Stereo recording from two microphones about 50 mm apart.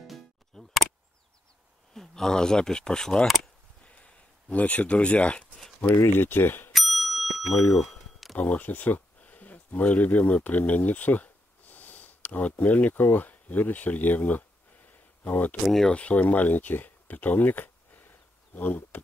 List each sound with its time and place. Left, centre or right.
0.0 s music: centre
2.0 s speech: centre
3.8 s a sound: left
6.1 s speech: left
6.7 s bicycle bell: centre
7.8 s a sound: centre
8.4 s speech: left
14.9 s a sound: left
15.6 s speech: centre
15.9 s speech: left